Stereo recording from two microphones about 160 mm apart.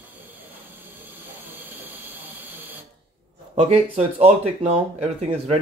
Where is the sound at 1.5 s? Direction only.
10° right (ahead or behind).